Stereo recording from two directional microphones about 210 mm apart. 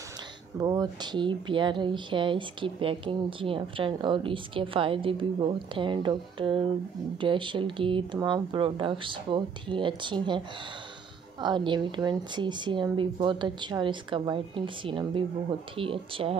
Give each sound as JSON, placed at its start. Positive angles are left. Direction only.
{"t": 0.6, "sound": "speech", "side_deg": -20}
{"t": 11.4, "sound": "speech", "side_deg": -20}